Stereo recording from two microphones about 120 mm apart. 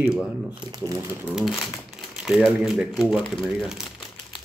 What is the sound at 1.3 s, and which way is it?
Speech, 5° right (ahead or behind).